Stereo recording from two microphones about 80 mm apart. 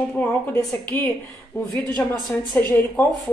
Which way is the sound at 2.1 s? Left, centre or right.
Left.